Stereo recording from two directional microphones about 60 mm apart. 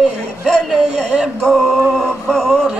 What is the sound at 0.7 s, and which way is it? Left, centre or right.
Speech, centre.